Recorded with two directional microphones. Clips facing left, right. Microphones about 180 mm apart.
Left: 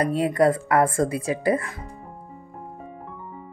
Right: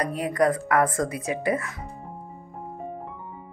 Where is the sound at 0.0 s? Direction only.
30° left (ahead or behind).